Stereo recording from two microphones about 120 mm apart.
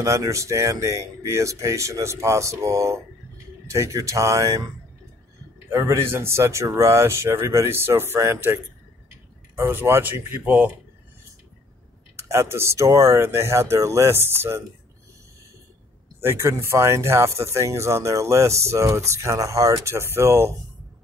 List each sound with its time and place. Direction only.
0.0 s speech: 25° right (ahead or behind)
5.7 s speech: 20° right (ahead or behind)
9.6 s speech: 20° right (ahead or behind)
12.2 s speech: 20° right (ahead or behind)
16.2 s speech: 20° right (ahead or behind)